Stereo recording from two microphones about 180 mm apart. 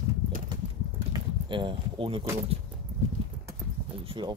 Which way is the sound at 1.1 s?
25° right (ahead or behind).